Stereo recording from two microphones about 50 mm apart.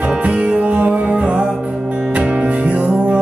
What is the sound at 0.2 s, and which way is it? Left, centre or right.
Music, right.